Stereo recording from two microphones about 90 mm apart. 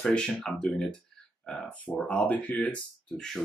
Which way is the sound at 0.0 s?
10° left (ahead or behind).